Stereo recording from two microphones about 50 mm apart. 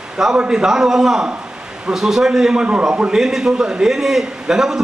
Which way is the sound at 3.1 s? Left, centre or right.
Centre.